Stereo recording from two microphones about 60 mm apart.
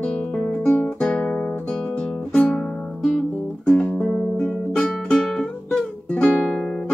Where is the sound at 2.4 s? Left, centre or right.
Centre.